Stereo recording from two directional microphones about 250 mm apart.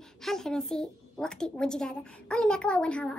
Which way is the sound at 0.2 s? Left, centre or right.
Centre.